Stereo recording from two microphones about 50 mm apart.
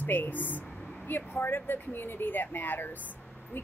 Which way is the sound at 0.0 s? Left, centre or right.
Left.